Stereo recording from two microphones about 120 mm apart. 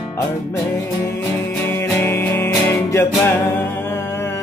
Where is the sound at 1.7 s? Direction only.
20° left (ahead or behind).